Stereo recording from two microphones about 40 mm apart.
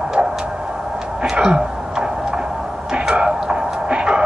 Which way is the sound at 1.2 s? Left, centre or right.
Right.